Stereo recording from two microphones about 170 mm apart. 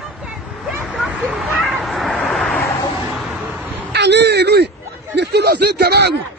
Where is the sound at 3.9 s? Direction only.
90° right; by 4.7 s 75° right (ahead or behind).